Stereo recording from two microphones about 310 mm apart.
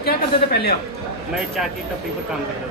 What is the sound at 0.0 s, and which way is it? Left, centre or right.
Speech, left.